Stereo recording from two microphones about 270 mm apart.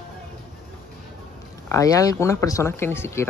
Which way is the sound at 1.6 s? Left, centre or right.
Centre.